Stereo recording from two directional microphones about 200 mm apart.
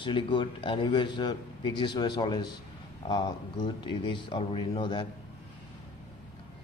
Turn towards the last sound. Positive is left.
turn(degrees=25)  # may be behind; listen again after turning